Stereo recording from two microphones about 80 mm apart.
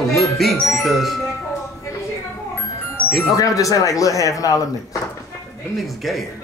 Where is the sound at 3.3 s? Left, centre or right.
Left.